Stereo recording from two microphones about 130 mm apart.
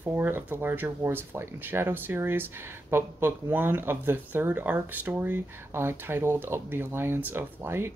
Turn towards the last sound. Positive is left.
turn(degrees=-20)  # may be behind; listen again after turning